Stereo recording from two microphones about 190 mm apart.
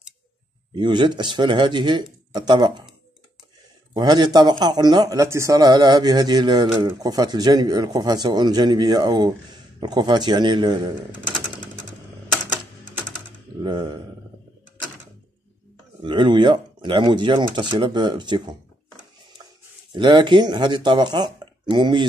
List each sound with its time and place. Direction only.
0.7 s speech: 25° right (ahead or behind)
3.9 s speech: 20° right (ahead or behind)
13.6 s speech: 25° right (ahead or behind)
16.0 s speech: 25° right (ahead or behind)
19.9 s speech: 25° right (ahead or behind)